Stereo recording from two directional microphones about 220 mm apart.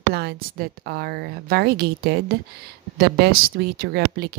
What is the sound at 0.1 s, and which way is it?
Speech, 45° right (ahead or behind).